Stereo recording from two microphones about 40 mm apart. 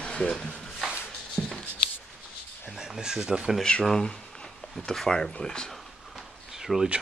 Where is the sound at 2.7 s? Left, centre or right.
Centre.